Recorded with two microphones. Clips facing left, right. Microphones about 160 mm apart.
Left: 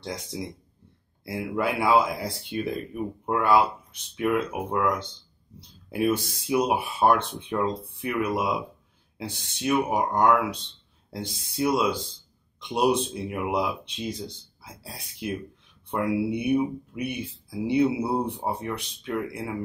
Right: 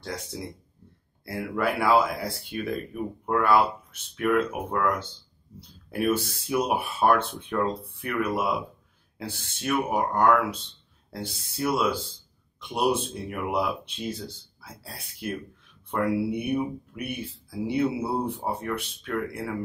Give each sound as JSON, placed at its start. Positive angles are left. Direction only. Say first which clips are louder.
{"t": 0.0, "sound": "speech", "louder": "left 1 dB", "side_deg": 20}